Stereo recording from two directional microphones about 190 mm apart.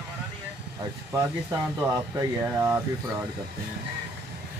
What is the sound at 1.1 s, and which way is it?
Speech, 15° right (ahead or behind).